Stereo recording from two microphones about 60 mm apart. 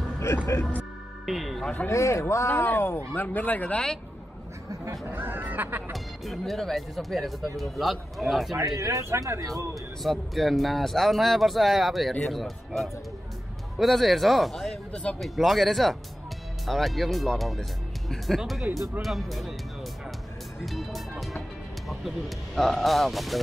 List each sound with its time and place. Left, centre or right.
0.3 s speech: left
1.2 s speech: centre
1.9 s speech: left
3.2 s speech: left
5.0 s speech: right
5.9 s speech: centre
8.7 s speech: right
10.0 s speech: centre
20.6 s speech: centre
22.6 s speech: centre